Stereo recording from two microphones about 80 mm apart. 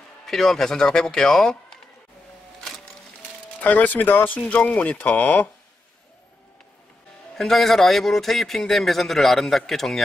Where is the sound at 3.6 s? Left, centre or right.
Left.